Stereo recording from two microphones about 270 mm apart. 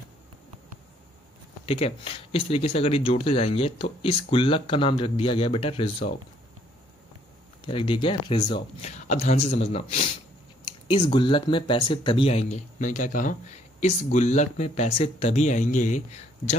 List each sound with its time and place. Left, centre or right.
1.7 s speech: left
7.6 s speech: centre